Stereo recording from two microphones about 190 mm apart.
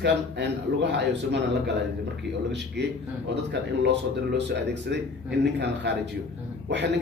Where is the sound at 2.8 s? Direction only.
60° right (ahead or behind).